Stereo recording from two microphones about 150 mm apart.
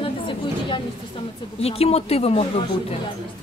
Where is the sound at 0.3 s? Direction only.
35° left (ahead or behind).